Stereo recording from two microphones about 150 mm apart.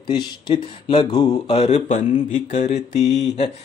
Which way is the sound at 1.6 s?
50° left (ahead or behind).